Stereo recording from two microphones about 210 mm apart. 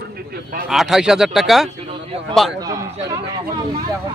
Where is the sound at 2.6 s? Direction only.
15° right (ahead or behind).